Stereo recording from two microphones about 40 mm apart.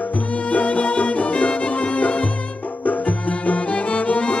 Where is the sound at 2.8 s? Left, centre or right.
Left.